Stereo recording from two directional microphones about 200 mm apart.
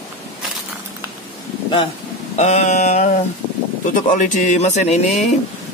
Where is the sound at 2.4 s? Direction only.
35° left (ahead or behind).